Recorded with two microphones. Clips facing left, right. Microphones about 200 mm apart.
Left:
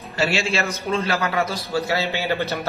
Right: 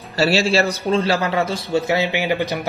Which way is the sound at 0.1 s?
35° right (ahead or behind).